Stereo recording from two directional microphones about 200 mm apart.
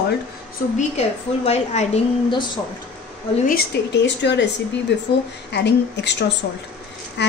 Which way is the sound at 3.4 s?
55° left (ahead or behind).